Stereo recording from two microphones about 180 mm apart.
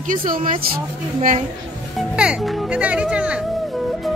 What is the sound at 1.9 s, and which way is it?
A child's voice, 5° right (ahead or behind).